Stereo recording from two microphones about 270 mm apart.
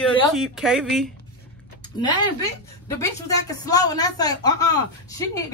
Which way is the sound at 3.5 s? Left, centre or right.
Centre.